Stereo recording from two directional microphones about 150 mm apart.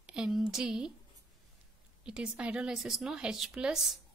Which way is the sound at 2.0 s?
5° right (ahead or behind).